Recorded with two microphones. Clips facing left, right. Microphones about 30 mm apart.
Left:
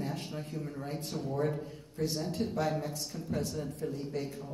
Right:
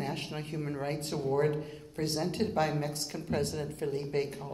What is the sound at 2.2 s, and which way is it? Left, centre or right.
A woman's voice, right.